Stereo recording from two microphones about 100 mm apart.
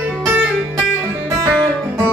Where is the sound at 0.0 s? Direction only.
15° right (ahead or behind).